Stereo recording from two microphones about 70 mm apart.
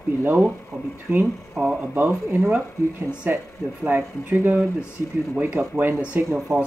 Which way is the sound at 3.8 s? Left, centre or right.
Right.